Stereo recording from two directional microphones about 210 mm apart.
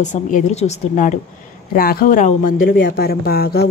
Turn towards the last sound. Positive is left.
turn(degrees=45)  # may be behind; listen again after turning